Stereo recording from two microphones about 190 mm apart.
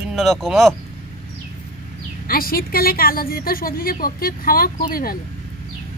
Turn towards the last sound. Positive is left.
turn(degrees=50)  # may be behind; listen again after turning